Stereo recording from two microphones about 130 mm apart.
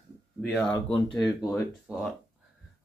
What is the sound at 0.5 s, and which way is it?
Speech, 5° left (ahead or behind).